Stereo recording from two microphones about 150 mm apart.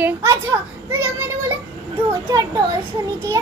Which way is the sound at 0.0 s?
20° right (ahead or behind).